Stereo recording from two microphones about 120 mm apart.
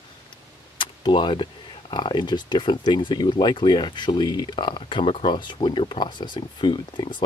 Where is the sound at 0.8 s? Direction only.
40° left (ahead or behind).